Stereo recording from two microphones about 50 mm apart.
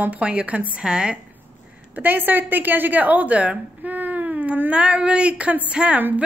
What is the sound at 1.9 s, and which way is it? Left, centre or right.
A woman's voice, right.